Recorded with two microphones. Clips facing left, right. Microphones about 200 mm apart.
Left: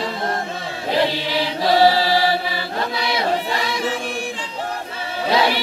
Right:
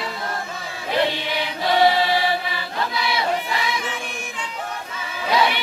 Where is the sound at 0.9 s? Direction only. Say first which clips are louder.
Left 2 dB; 30° left (ahead or behind).